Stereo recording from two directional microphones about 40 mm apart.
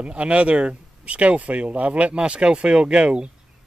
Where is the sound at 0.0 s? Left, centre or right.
Right.